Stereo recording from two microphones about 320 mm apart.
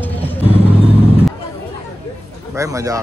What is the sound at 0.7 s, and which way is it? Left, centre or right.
Vehicle, centre.